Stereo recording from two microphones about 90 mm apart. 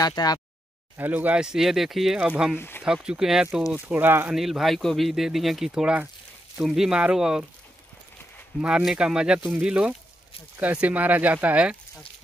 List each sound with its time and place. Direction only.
0.0 s a sound: 45° left (ahead or behind)
0.9 s speech: 20° right (ahead or behind)
1.4 s speech: 5° right (ahead or behind)
2.5 s speech: 25° left (ahead or behind)
2.8 s speech: 10° right (ahead or behind)
3.7 s speech: 20° right (ahead or behind)
4.3 s speech: 5° right (ahead or behind)
8.5 s speech: 10° right (ahead or behind)